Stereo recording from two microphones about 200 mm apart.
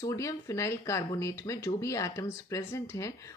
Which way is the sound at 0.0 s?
15° left (ahead or behind).